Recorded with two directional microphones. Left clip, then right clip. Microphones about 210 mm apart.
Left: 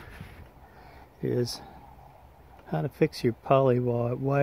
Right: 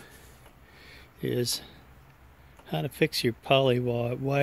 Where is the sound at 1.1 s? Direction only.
5° right (ahead or behind).